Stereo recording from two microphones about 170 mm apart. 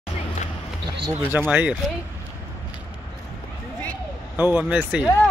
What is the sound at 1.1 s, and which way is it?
Speech, 10° right (ahead or behind).